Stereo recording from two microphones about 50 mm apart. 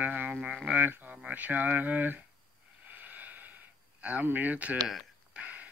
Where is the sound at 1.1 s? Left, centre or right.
Right.